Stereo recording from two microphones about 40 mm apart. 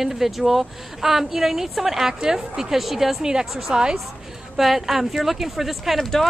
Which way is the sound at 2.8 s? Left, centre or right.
Centre.